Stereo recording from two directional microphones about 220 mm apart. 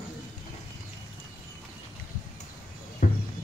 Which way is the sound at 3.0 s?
40° left (ahead or behind).